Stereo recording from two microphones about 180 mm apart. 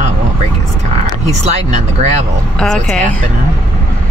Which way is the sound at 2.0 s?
40° right (ahead or behind).